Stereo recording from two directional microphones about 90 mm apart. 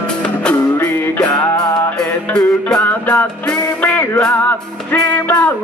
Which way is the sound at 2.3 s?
10° left (ahead or behind).